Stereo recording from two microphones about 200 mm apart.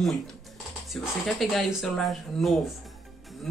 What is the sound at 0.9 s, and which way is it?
Speech, centre (ahead or behind).